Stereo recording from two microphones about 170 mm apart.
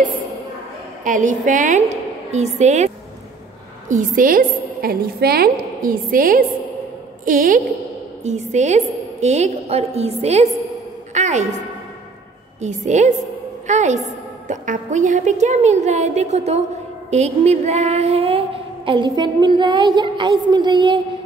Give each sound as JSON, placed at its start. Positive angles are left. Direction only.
{"t": 1.0, "sound": "a woman's voice", "side_deg": -50}
{"t": 3.9, "sound": "a woman's voice", "side_deg": -55}
{"t": 11.1, "sound": "a sound", "side_deg": -45}
{"t": 12.5, "sound": "a woman's voice", "side_deg": -45}